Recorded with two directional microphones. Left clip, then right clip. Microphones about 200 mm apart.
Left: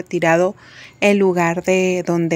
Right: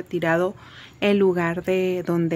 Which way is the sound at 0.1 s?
15° left (ahead or behind).